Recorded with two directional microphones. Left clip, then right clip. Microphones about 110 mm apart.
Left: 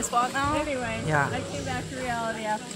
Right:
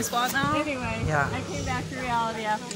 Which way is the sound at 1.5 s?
10° left (ahead or behind).